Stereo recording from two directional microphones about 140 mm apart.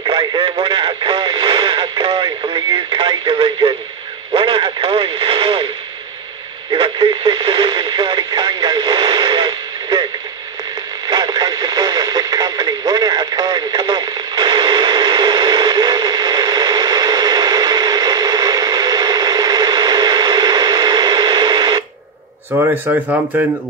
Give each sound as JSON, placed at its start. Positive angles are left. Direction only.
{"t": 0.0, "sound": "radio", "side_deg": -30}
{"t": 6.7, "sound": "radio", "side_deg": -35}
{"t": 11.1, "sound": "radio", "side_deg": -30}
{"t": 22.9, "sound": "speech", "side_deg": -10}